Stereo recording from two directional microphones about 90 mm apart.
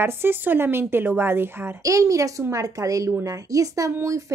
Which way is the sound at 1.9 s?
40° right (ahead or behind).